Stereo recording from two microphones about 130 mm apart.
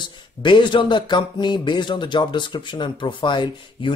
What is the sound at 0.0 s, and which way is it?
Speech, 35° left (ahead or behind).